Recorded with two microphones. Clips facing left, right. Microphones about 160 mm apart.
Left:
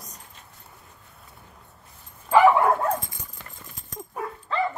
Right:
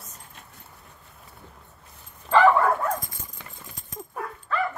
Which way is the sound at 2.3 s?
10° left (ahead or behind).